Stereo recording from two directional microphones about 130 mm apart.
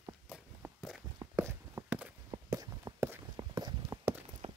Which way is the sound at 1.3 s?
20° right (ahead or behind).